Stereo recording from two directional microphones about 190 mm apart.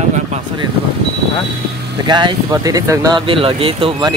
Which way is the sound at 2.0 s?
25° right (ahead or behind).